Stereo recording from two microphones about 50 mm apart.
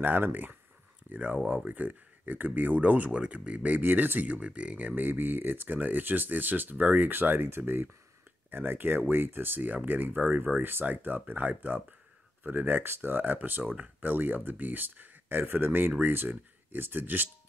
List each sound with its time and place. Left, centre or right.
0.0 s speech: right
3.8 s speech: right
4.3 s speech: right